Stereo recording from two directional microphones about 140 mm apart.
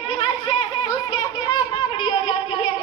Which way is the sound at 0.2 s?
40° left (ahead or behind).